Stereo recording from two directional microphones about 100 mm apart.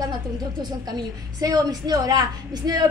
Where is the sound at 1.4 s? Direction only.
40° right (ahead or behind).